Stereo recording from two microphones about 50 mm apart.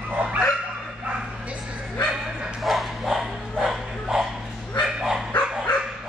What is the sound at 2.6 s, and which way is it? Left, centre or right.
Bow-wow, centre.